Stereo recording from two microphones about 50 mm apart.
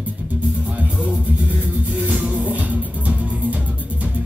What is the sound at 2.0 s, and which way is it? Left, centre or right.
Music, right.